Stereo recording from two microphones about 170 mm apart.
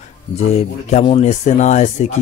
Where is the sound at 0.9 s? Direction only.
40° left (ahead or behind).